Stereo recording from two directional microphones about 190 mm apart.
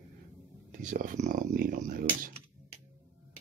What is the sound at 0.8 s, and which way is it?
Speech, 45° right (ahead or behind).